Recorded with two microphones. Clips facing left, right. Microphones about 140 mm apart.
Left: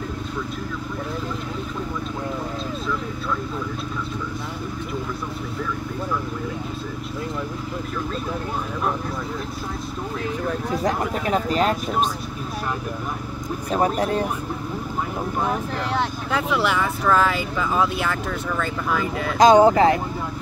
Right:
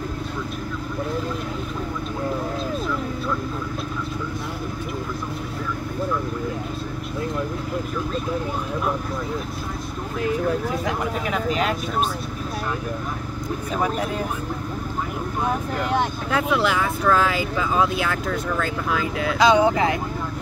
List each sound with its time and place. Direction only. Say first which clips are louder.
10.9 s a sound: left 2 dB; 35° left (ahead or behind)
13.7 s vehicle: left 4 dB; 35° left (ahead or behind)
16.3 s speech: right 1 dB; centre (ahead or behind)
19.3 s speech: left 4 dB; 45° left (ahead or behind)